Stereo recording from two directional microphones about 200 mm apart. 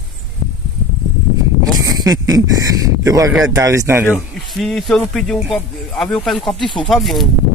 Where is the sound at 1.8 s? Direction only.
20° right (ahead or behind).